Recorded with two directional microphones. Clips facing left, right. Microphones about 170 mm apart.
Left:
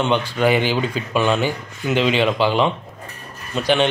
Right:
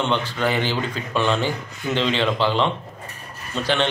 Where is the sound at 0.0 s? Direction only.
15° left (ahead or behind).